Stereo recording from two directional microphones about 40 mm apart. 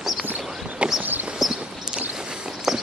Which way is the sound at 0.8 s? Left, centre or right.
Right.